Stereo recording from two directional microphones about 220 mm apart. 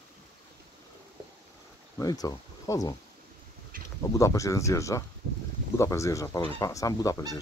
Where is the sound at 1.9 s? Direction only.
15° left (ahead or behind).